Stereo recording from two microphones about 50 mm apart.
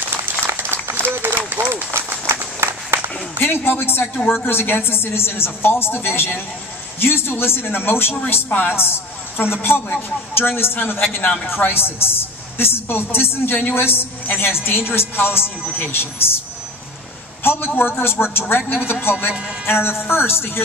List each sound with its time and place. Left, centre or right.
0.5 s applause: right
1.5 s speech: right
2.0 s run: right
3.3 s a woman's voice: left
17.4 s a man's voice: left
19.6 s a woman's voice: left